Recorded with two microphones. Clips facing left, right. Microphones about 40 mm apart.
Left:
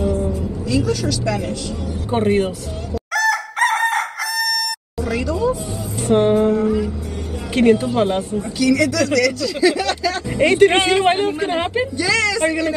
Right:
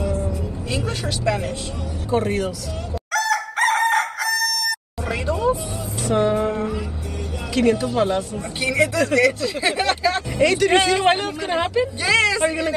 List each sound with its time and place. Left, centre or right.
0.7 s speech: right
2.0 s a woman's voice: left
3.1 s chicken: centre
5.0 s music: right
6.0 s music: left
7.5 s a woman's voice: left
8.4 s speech: right
10.3 s a woman's voice: left
12.0 s speech: right